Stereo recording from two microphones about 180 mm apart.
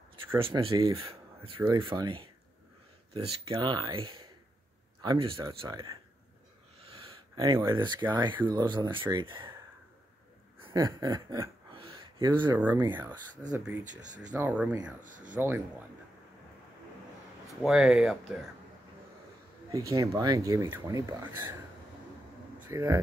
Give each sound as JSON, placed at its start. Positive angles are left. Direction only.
{"t": 0.5, "sound": "speech", "side_deg": -15}
{"t": 1.9, "sound": "speech", "side_deg": -25}
{"t": 7.3, "sound": "speech", "side_deg": -20}
{"t": 10.6, "sound": "a sound", "side_deg": -20}
{"t": 12.5, "sound": "speech", "side_deg": -10}
{"t": 15.0, "sound": "speech", "side_deg": -45}
{"t": 15.3, "sound": "speech", "side_deg": -10}
{"t": 17.6, "sound": "speech", "side_deg": -5}
{"t": 19.7, "sound": "speech", "side_deg": -20}
{"t": 22.7, "sound": "speech", "side_deg": -15}